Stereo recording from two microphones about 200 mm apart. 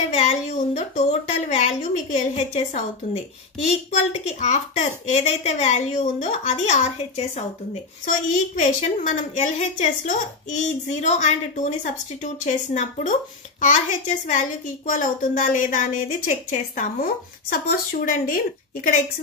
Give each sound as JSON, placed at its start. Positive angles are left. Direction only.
{"t": 0.1, "sound": "a woman's voice", "side_deg": 35}